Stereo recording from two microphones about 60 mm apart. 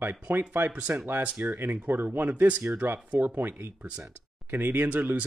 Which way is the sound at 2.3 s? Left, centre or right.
Right.